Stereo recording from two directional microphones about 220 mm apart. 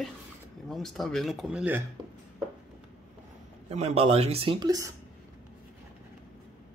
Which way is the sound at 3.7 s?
30° right (ahead or behind).